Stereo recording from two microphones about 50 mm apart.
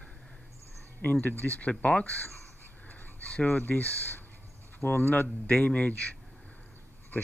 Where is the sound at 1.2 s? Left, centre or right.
Left.